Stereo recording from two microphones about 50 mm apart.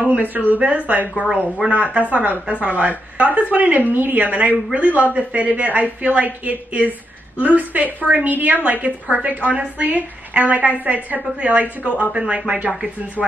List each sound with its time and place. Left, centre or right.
0.0 s a woman's voice: right